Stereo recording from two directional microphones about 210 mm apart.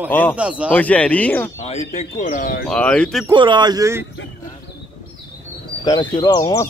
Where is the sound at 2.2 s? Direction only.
40° left (ahead or behind).